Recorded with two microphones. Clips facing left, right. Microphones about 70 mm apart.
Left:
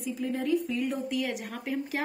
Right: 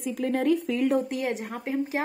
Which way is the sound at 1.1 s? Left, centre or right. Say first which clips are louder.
Right 2 dB; right.